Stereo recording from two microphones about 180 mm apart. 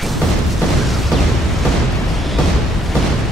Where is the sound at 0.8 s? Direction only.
Centre (ahead or behind).